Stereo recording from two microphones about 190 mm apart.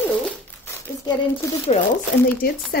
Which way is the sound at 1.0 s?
25° left (ahead or behind).